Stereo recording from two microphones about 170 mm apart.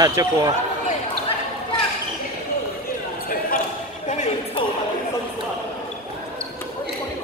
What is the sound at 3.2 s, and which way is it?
Basketball bounce, 55° left (ahead or behind).